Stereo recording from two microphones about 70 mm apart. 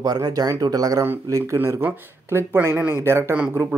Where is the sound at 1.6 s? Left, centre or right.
Right.